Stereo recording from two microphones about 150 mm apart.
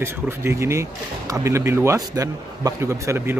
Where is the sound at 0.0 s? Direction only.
15° right (ahead or behind).